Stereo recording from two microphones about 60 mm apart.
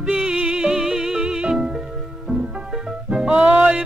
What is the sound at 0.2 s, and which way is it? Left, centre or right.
Music, centre.